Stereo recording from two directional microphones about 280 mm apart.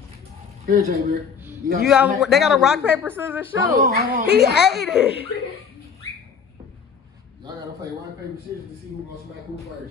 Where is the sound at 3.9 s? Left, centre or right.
Right.